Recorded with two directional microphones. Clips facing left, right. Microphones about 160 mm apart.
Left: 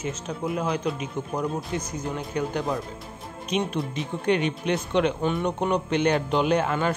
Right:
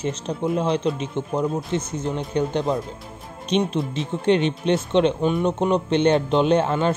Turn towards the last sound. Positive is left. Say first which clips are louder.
# right 4 dB
turn(degrees=-25)  # may be behind; listen again after turning